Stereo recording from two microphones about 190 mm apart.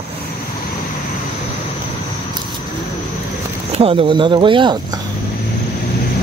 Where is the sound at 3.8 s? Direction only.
25° right (ahead or behind).